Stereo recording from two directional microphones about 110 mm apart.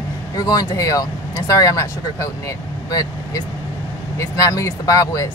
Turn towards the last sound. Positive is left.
turn(degrees=30)  # may be behind; listen again after turning